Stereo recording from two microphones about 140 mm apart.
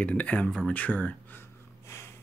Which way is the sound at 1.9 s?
20° left (ahead or behind).